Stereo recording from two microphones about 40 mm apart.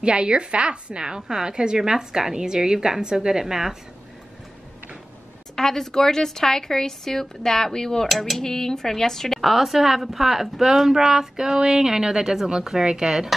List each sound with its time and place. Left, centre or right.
0.0 s a woman's voice: right
5.6 s speech: centre
8.1 s speech: centre
8.5 s speech: centre
9.4 s a woman's voice: centre